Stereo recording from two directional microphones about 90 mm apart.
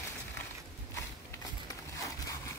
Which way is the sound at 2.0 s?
35° left (ahead or behind).